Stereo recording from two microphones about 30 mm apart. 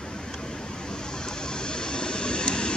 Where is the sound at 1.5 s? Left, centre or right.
Left.